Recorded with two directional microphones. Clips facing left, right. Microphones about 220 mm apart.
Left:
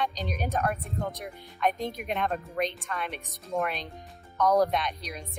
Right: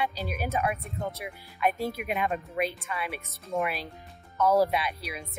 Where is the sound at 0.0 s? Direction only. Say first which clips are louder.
Even; 5° right (ahead or behind).